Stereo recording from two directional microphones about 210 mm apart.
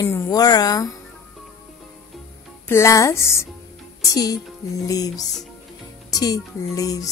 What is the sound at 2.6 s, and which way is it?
A woman's voice, 15° left (ahead or behind).